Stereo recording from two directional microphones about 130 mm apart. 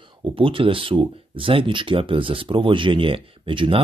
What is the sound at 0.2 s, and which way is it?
Speech, 40° right (ahead or behind).